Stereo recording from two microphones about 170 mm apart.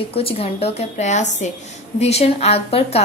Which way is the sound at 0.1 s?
35° left (ahead or behind).